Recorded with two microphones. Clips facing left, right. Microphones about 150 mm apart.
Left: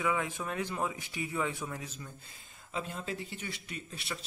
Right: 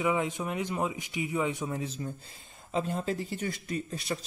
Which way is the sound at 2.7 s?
35° right (ahead or behind).